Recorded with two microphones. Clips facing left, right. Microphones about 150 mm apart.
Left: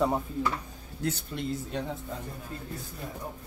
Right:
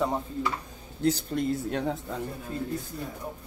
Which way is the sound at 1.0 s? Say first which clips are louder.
Right 7 dB; 35° right (ahead or behind).